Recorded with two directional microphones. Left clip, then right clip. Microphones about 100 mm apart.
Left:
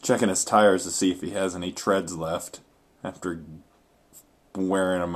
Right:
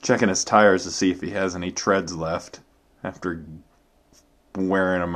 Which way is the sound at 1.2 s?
15° left (ahead or behind).